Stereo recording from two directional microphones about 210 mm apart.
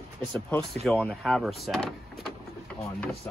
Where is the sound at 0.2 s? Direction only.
5° left (ahead or behind).